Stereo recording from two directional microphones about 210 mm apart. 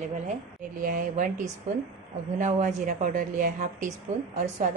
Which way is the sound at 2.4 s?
35° right (ahead or behind).